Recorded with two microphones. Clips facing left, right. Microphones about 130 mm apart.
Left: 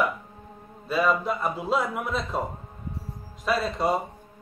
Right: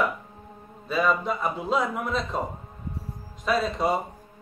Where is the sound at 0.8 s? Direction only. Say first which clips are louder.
Even; centre (ahead or behind).